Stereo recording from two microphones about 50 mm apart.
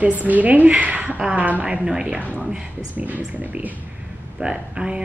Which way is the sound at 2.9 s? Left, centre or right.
Right.